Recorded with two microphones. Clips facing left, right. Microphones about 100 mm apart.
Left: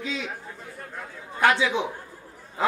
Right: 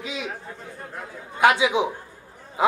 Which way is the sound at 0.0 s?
15° right (ahead or behind).